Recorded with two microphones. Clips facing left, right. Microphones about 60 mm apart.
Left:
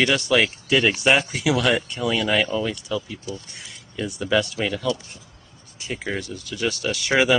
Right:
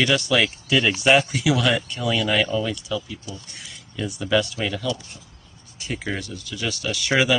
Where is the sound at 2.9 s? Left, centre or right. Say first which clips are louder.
Left 1 dB; left.